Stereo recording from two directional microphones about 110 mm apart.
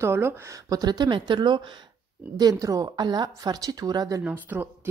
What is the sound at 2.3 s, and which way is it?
Speech, 35° right (ahead or behind).